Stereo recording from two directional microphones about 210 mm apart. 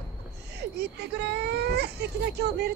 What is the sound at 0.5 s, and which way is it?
Speech, 50° right (ahead or behind).